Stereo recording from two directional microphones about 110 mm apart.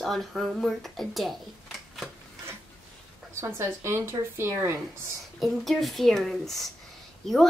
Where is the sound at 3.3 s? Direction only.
25° right (ahead or behind).